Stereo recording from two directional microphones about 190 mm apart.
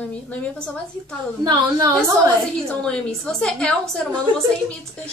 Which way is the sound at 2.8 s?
5° left (ahead or behind).